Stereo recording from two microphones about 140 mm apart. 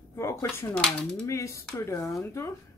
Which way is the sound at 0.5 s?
20° left (ahead or behind).